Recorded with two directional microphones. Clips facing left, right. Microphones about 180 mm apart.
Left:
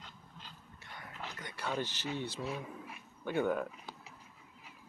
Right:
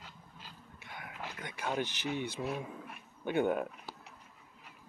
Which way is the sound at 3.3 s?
20° right (ahead or behind).